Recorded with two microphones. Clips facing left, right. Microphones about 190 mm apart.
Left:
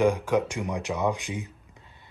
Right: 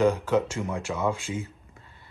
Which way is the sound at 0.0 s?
10° left (ahead or behind).